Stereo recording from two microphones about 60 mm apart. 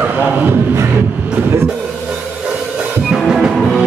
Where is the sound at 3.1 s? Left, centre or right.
Centre.